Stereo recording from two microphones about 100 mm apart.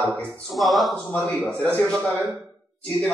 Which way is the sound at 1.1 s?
20° left (ahead or behind).